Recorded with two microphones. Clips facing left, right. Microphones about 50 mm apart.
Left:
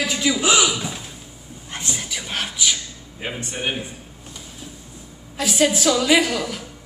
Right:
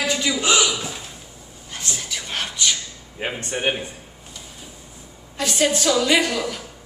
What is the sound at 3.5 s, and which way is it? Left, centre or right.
Speech, right.